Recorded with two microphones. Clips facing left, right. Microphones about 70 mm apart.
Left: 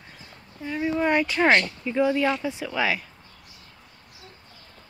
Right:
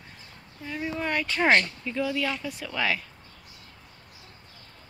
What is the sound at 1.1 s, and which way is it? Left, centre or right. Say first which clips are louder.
Speech: left 2 dB; centre.